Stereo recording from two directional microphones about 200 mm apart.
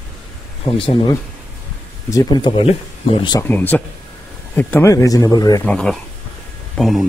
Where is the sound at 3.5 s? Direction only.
10° left (ahead or behind).